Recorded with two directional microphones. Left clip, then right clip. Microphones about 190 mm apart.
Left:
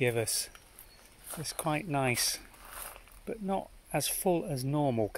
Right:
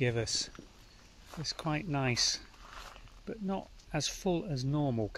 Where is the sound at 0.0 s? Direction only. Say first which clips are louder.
Left 2 dB; 5° left (ahead or behind).